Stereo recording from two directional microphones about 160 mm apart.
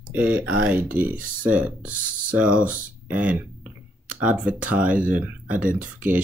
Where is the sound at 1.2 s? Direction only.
60° right (ahead or behind).